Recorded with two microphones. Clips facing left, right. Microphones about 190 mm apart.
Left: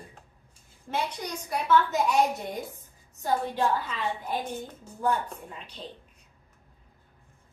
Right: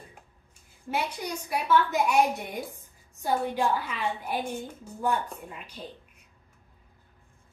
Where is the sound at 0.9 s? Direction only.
10° right (ahead or behind).